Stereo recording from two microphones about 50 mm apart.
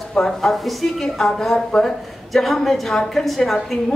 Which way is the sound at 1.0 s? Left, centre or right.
Centre.